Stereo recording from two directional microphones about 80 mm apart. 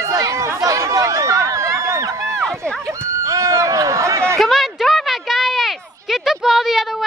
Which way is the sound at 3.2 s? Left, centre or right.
Right.